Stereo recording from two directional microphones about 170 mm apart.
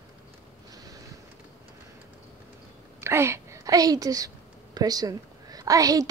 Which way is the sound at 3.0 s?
15° right (ahead or behind).